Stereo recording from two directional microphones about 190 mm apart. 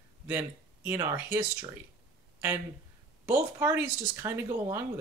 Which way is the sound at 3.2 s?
10° right (ahead or behind).